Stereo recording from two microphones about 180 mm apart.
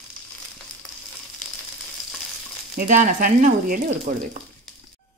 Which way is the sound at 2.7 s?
50° right (ahead or behind).